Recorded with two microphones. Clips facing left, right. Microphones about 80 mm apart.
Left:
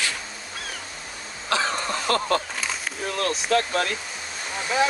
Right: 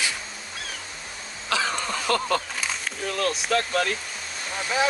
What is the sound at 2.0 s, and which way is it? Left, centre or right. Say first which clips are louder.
Speech: left 1 dB; left.